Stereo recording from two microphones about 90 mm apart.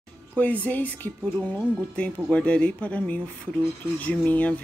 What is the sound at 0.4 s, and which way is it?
Speech, 15° left (ahead or behind).